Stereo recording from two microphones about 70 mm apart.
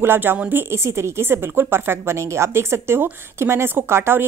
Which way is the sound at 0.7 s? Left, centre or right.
Right.